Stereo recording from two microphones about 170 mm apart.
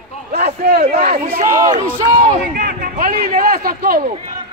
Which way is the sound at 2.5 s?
50° right (ahead or behind).